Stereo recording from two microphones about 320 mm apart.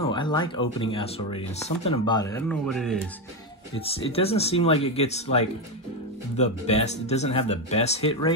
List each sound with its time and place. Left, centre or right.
0.1 s a sound: centre
0.7 s speech: centre
3.8 s speech: centre